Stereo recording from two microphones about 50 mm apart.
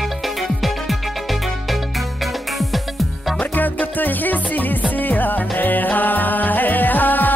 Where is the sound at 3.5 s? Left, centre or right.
Left.